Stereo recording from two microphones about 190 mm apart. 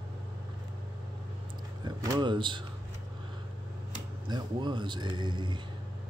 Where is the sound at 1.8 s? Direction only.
20° right (ahead or behind).